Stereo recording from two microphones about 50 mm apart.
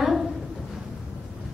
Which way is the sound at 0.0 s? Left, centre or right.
Centre.